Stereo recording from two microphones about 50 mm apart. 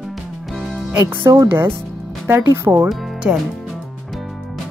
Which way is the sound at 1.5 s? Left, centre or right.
Right.